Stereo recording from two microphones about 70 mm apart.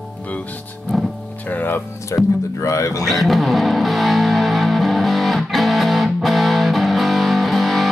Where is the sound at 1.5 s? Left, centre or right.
Left.